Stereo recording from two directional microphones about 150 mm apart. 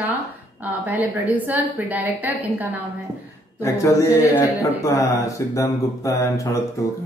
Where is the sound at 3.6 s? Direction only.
20° left (ahead or behind).